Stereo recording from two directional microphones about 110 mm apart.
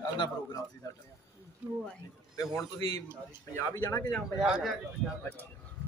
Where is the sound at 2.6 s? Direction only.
25° left (ahead or behind).